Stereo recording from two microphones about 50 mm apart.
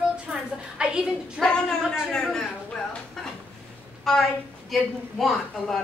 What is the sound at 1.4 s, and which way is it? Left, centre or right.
A woman's voice, centre.